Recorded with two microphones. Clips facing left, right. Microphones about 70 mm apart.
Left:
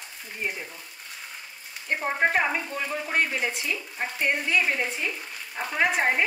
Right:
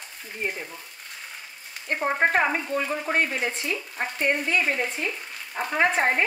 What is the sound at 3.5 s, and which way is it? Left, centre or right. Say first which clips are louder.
Speech: right 2 dB; right.